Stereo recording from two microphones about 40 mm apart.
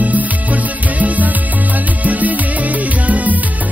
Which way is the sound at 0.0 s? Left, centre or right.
Right.